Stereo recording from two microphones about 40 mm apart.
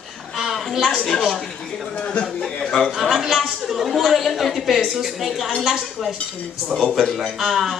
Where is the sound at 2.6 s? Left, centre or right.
Centre.